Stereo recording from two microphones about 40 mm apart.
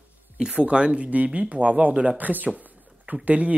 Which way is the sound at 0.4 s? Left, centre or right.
Right.